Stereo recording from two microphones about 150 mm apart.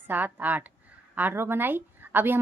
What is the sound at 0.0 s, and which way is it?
A woman's voice, 10° right (ahead or behind).